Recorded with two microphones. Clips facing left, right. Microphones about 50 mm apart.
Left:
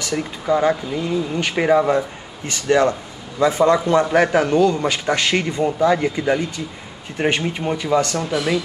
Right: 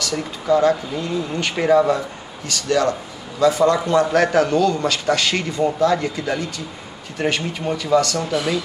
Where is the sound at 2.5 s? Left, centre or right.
Left.